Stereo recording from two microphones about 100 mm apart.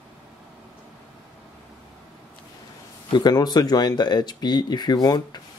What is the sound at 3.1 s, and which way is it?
Speech, 45° left (ahead or behind).